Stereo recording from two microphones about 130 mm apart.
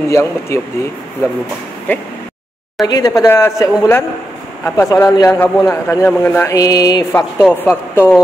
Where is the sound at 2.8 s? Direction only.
30° left (ahead or behind).